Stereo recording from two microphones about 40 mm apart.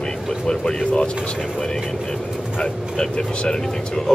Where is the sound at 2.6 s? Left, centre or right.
Left.